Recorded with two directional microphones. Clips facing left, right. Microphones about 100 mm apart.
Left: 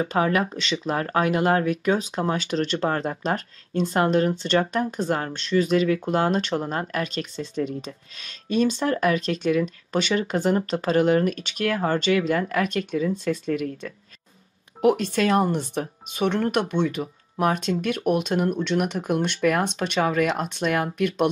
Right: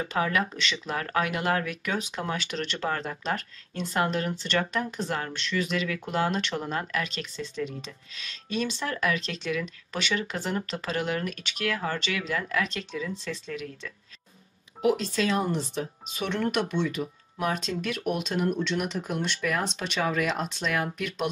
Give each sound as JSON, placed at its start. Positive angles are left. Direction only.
{"t": 0.0, "sound": "speech", "side_deg": 35}